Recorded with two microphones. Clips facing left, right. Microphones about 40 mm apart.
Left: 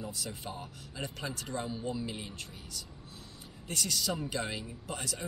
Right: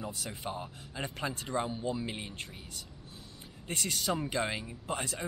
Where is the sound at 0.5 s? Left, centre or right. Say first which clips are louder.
Right 3 dB; right.